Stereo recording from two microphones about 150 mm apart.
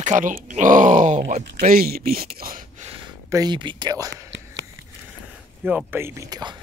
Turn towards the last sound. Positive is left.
turn(degrees=-25)  # may be behind; listen again after turning